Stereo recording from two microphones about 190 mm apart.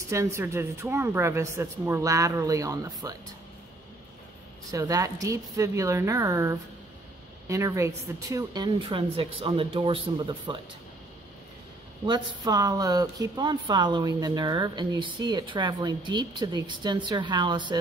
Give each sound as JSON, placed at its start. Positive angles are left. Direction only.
{"t": 0.1, "sound": "a woman's voice", "side_deg": -15}
{"t": 4.6, "sound": "a woman's voice", "side_deg": -20}
{"t": 12.1, "sound": "speech", "side_deg": -20}